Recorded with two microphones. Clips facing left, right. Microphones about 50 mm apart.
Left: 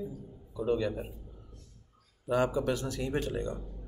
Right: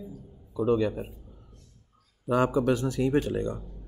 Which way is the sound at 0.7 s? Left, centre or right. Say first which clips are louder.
Right 5 dB; right.